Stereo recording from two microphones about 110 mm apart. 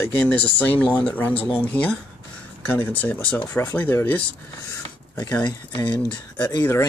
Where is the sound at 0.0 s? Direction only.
15° left (ahead or behind).